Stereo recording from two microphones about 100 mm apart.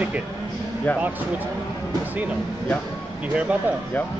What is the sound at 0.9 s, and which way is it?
Speech, 15° left (ahead or behind).